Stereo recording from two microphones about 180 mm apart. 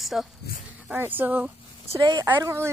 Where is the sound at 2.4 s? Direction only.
15° right (ahead or behind).